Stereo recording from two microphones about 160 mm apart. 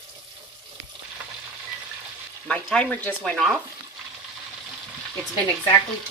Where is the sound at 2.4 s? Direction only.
5° left (ahead or behind).